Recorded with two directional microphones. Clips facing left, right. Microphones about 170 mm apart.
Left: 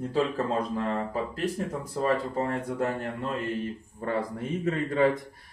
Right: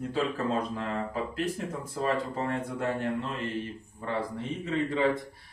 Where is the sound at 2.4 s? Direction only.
35° left (ahead or behind).